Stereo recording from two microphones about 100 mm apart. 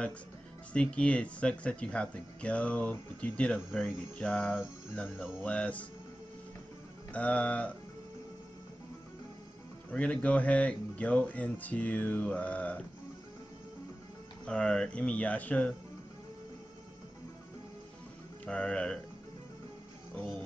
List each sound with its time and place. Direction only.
0.7 s speech: 10° left (ahead or behind)
7.1 s speech: 15° left (ahead or behind)
9.8 s speech: 15° left (ahead or behind)
14.4 s speech: 10° left (ahead or behind)
18.4 s speech: 10° left (ahead or behind)